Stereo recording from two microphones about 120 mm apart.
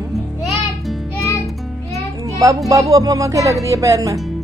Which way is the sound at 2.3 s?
25° right (ahead or behind).